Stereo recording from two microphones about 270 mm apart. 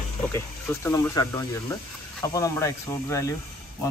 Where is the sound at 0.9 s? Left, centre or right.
Centre.